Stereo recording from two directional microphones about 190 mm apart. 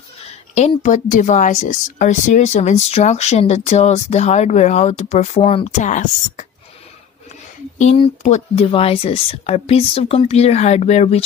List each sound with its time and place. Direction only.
0.6 s speech: 40° left (ahead or behind)
7.8 s speech: 35° left (ahead or behind)